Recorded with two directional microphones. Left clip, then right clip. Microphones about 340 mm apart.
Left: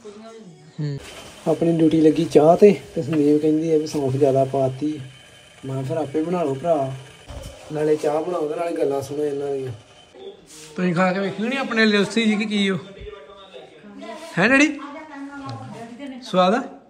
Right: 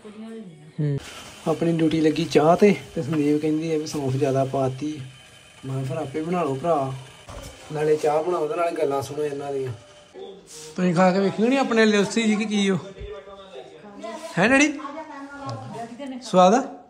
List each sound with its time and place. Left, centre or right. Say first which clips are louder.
1.4 s a man's voice: left 4 dB; centre
1.9 s speech: left 5 dB; right
2.3 s a man's voice: left 4 dB; centre
3.6 s speech: left 6 dB; right
4.0 s a man's voice: left 3 dB; centre
4.6 s a man's voice: left 3 dB; centre
5.6 s a man's voice: left 4 dB; centre
10.8 s a man's voice: right 1 dB; centre
14.3 s a man's voice: left 2 dB; centre
16.2 s a man's voice: right 2 dB; centre